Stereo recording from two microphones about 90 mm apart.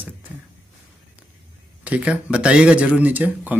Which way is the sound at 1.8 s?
15° right (ahead or behind).